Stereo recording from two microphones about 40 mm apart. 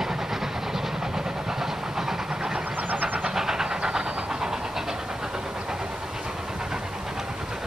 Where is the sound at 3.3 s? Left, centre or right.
Centre.